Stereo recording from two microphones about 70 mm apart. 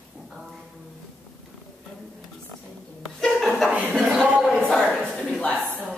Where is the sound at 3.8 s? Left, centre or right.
Right.